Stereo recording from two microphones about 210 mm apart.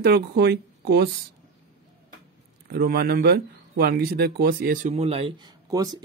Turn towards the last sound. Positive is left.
turn(degrees=-20)  # may be behind; listen again after turning